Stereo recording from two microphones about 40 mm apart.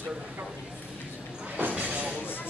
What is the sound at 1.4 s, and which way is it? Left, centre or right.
Vehicle, right.